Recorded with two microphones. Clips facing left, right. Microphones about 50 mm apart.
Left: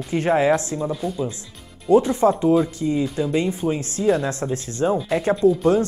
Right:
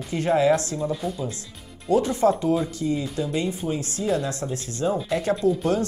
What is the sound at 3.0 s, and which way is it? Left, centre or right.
Speech, centre.